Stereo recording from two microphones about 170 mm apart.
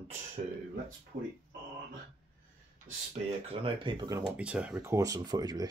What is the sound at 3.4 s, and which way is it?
Speech, 30° right (ahead or behind).